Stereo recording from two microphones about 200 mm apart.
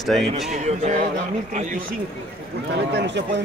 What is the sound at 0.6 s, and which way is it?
A man's voice, 35° right (ahead or behind).